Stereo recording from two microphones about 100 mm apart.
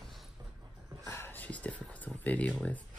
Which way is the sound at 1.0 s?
25° left (ahead or behind).